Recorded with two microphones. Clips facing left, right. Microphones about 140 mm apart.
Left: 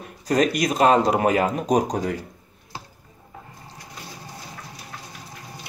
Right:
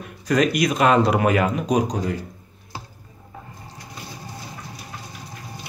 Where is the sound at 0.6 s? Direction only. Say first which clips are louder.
Left 1 dB; 35° left (ahead or behind); by 2.1 s 55° left (ahead or behind).